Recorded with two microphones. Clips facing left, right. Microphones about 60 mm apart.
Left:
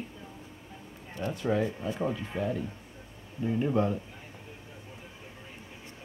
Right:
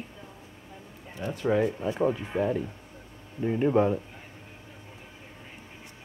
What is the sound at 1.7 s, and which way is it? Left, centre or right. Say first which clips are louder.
Speech: right 5 dB; right.